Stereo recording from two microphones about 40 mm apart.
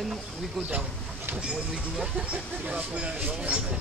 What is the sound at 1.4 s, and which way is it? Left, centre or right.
Speech, centre.